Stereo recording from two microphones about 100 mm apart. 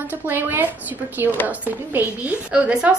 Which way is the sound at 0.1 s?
20° right (ahead or behind).